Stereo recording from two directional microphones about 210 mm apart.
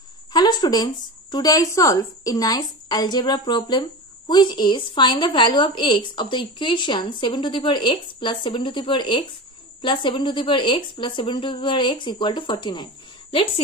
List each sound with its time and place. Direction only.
0.3 s a woman's voice: 20° left (ahead or behind)